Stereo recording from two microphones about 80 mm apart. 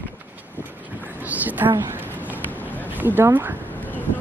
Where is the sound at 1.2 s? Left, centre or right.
Right.